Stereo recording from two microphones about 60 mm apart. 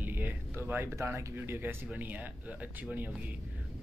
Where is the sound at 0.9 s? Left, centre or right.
Right.